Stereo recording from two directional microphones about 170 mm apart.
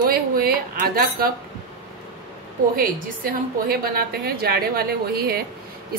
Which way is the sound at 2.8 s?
60° right (ahead or behind).